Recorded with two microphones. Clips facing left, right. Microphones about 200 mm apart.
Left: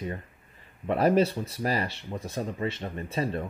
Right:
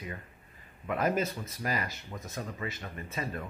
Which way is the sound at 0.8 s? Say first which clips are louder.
Left 7 dB; 35° left (ahead or behind).